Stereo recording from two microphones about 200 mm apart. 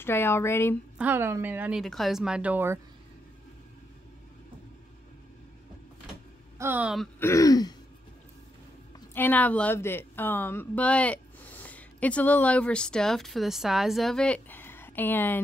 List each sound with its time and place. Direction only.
0.0 s speech: 10° left (ahead or behind)
0.9 s a woman's voice: 10° right (ahead or behind)
6.6 s speech: 5° right (ahead or behind)
7.2 s speech: 15° left (ahead or behind)
9.1 s a woman's voice: 10° left (ahead or behind)